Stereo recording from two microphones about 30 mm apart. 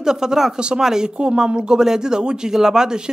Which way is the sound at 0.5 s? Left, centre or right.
Right.